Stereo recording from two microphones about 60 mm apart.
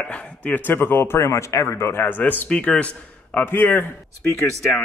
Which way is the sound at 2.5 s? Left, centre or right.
Centre.